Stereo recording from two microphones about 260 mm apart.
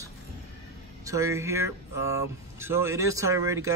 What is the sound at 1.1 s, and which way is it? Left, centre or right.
Speech, centre.